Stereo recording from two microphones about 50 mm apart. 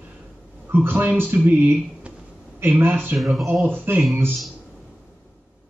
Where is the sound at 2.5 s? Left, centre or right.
Right.